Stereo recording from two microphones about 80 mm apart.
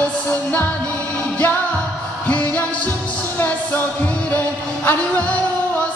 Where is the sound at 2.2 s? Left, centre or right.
Centre.